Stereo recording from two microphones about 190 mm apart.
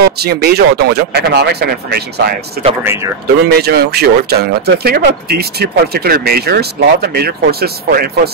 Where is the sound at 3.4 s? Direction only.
55° right (ahead or behind).